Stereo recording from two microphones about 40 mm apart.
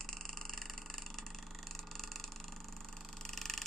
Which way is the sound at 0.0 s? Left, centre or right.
Centre.